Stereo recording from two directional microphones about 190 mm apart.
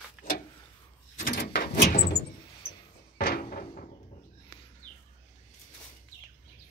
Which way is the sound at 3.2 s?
60° left (ahead or behind).